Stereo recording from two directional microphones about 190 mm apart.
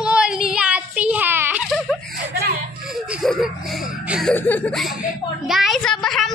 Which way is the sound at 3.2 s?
Centre (ahead or behind).